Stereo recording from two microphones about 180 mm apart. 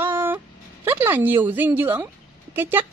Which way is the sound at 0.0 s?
10° right (ahead or behind).